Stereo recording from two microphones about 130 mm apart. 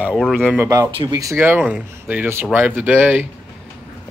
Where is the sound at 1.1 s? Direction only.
20° right (ahead or behind).